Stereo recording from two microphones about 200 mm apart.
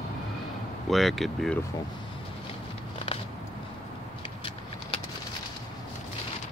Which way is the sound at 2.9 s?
30° left (ahead or behind).